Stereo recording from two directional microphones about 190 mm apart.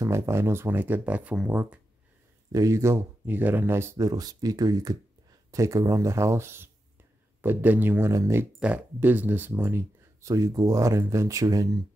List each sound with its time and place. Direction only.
0.0 s speech: 15° right (ahead or behind)